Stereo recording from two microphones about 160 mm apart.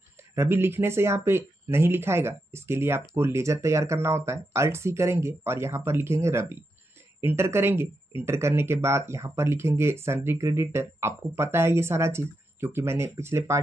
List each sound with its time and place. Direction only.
0.3 s speech: 15° right (ahead or behind)